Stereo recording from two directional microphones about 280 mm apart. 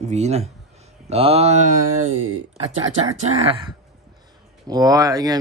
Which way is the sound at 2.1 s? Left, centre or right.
Right.